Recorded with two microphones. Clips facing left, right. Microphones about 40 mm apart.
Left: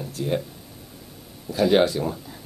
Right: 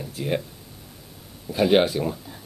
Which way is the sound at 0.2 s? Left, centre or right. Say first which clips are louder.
Left 1 dB; right.